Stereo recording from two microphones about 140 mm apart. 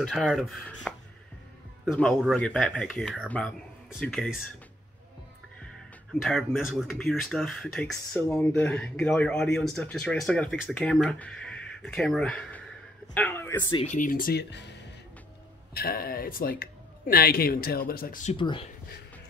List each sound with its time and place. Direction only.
0.0 s speech: 5° right (ahead or behind)
0.9 s music: 5° left (ahead or behind)
1.9 s speech: 5° left (ahead or behind)
6.2 s speech: centre (ahead or behind); by 13.7 s 20° left (ahead or behind)
13.8 s speech: 70° left (ahead or behind)
15.7 s speech: 90° left
18.3 s speech: 35° left (ahead or behind)